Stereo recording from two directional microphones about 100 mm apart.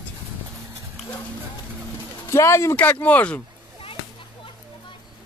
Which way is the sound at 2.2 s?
25° left (ahead or behind).